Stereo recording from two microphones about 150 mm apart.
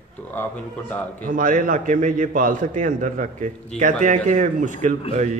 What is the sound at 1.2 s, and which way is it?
A man's voice, 65° right (ahead or behind).